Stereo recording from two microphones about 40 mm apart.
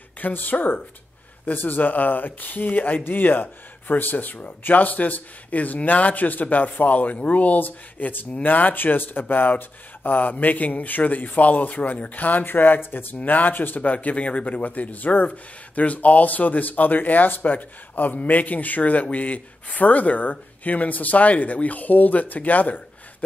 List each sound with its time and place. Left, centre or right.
0.2 s speech: left
3.0 s speech: left
13.7 s speech: left